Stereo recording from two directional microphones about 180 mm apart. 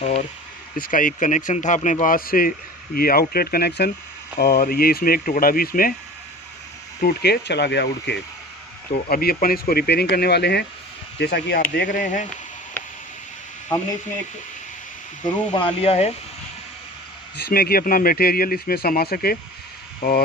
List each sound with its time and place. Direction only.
0.7 s speech: 50° left (ahead or behind)
7.0 s speech: 60° left (ahead or behind)
9.1 s speech: 55° left (ahead or behind)
15.2 s speech: 25° left (ahead or behind)
17.4 s speech: 60° left (ahead or behind)